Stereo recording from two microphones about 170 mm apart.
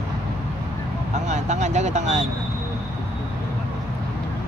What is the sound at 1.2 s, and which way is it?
Vehicle, 45° right (ahead or behind).